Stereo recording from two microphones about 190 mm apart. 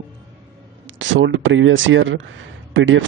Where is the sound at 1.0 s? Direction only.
80° right.